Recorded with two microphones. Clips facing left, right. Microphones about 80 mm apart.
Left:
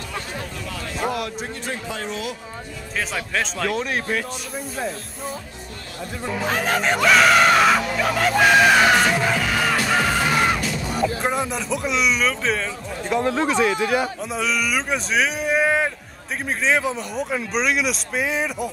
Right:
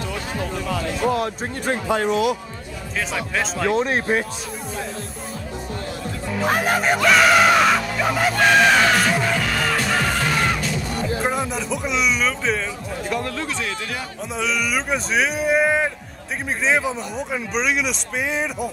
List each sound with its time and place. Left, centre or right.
1.7 s speech: right
3.2 s speech: centre
3.6 s speech: right
6.4 s speech: centre
13.1 s speech: left
14.3 s speech: centre